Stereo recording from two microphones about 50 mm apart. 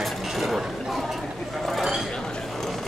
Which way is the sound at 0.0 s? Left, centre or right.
Centre.